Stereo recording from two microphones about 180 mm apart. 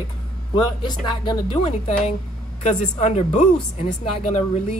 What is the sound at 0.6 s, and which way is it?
Speech, 25° left (ahead or behind).